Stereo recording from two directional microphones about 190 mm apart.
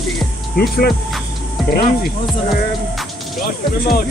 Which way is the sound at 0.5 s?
55° left (ahead or behind).